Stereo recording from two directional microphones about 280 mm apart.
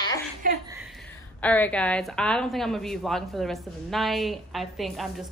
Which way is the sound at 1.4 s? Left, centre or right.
Centre.